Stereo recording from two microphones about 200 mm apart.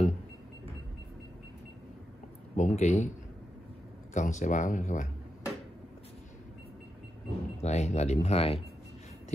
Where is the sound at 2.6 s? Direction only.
35° left (ahead or behind).